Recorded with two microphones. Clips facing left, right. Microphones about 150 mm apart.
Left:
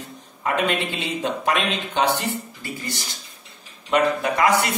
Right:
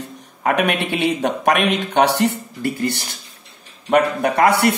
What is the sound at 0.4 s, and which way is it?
A man's voice, 65° right (ahead or behind).